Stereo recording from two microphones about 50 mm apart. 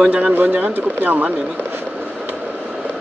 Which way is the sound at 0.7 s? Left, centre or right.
Right.